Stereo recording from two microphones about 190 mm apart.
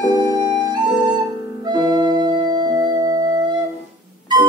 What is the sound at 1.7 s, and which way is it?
Organ, 25° right (ahead or behind).